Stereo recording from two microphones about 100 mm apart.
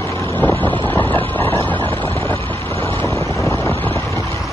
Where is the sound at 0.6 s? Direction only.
15° left (ahead or behind).